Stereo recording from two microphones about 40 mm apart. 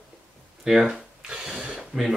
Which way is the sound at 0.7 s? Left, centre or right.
Centre.